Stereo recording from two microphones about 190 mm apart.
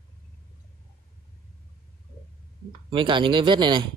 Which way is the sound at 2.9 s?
25° right (ahead or behind).